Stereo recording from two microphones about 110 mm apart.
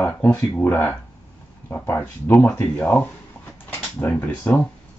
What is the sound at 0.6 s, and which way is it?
Speech, 20° left (ahead or behind).